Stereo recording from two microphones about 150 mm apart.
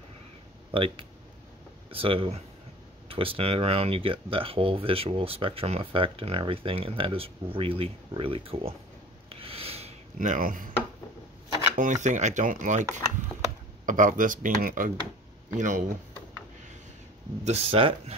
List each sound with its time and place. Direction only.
0.7 s speech: 35° right (ahead or behind)
9.3 s snort: 40° right (ahead or behind)
10.1 s speech: 60° right (ahead or behind)
11.7 s speech: 55° right (ahead or behind)
13.8 s speech: 60° right (ahead or behind)
17.5 s speech: 40° right (ahead or behind)